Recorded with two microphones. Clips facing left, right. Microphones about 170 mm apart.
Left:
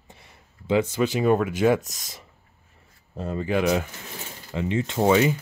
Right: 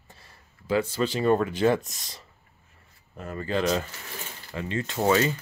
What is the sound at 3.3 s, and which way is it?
Speech, 15° left (ahead or behind).